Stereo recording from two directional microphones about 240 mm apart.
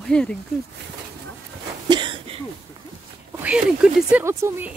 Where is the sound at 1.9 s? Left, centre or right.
Centre.